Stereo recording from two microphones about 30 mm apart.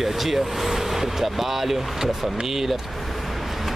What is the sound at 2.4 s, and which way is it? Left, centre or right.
Speech, centre.